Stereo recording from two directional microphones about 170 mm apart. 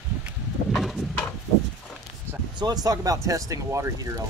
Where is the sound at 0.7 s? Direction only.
Centre (ahead or behind).